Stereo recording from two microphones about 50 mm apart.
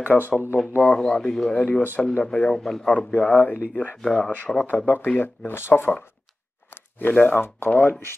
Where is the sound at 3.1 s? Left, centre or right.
Left.